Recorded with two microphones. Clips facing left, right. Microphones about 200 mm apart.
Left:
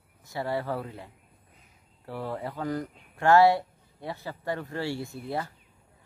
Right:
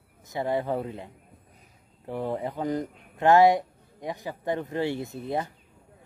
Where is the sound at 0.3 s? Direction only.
20° right (ahead or behind).